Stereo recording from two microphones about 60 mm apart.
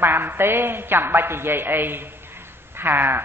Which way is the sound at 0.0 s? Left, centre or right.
Right.